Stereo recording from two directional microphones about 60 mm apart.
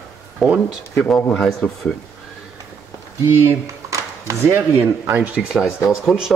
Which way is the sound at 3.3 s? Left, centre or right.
Right.